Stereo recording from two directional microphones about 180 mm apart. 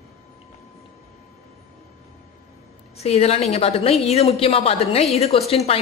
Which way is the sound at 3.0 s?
35° left (ahead or behind).